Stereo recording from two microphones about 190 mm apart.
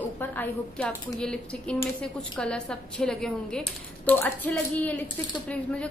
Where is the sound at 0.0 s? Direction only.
10° left (ahead or behind).